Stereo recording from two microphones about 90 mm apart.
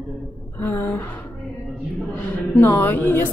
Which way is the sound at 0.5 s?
25° left (ahead or behind).